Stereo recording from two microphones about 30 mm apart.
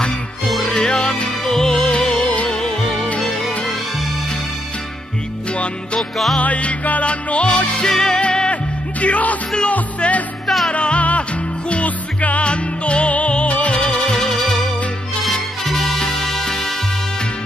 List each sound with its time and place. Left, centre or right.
0.7 s music: left
1.4 s music: left
1.8 s music: left
5.9 s music: centre
6.4 s music: left
7.1 s music: left
7.8 s music: left
9.0 s music: left
9.9 s music: left
11.7 s music: left
12.4 s music: left
13.7 s music: left
14.1 s music: centre
15.6 s music: centre